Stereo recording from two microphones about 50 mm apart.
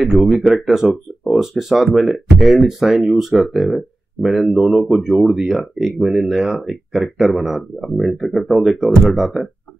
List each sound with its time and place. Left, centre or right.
0.0 s speech: centre
1.2 s speech: centre